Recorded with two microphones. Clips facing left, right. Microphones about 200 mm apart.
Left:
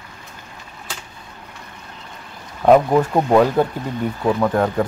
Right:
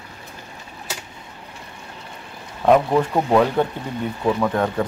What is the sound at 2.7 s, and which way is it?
Speech, 15° left (ahead or behind).